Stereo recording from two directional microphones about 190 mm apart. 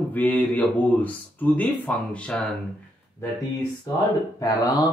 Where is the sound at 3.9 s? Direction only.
20° left (ahead or behind).